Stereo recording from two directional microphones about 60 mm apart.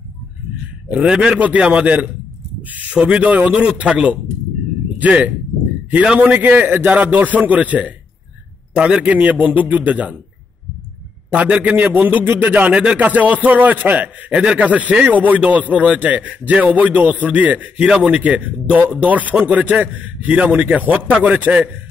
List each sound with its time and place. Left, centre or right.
1.0 s a man's voice: centre
9.1 s a man's voice: right
11.3 s a man's voice: right